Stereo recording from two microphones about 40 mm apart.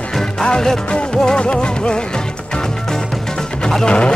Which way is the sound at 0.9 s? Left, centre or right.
Left.